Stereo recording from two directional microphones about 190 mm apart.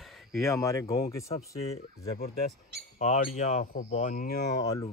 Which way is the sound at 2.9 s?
45° left (ahead or behind).